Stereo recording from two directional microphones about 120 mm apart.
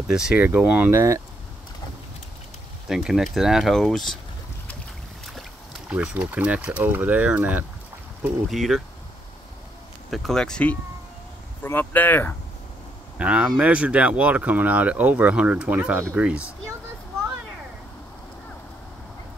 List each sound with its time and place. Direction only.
0.1 s speech: 5° right (ahead or behind)
0.8 s speech: 25° right (ahead or behind)
2.9 s speech: 5° right (ahead or behind)
5.2 s speech: centre (ahead or behind)
8.5 s speech: centre (ahead or behind)
10.1 s speech: 5° left (ahead or behind)
13.2 s speech: 10° right (ahead or behind)